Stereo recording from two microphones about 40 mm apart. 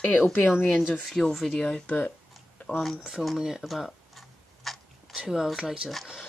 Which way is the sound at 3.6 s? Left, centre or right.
Centre.